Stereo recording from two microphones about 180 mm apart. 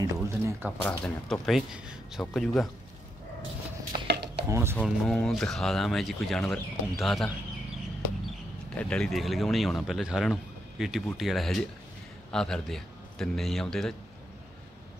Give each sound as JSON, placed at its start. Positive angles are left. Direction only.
{"t": 0.0, "sound": "a sound", "side_deg": -15}
{"t": 0.8, "sound": "speech", "side_deg": 0}
{"t": 4.1, "sound": "dishes", "side_deg": -70}
{"t": 4.5, "sound": "speech", "side_deg": -15}
{"t": 4.8, "sound": "speech", "side_deg": 0}
{"t": 8.7, "sound": "a man's voice", "side_deg": 5}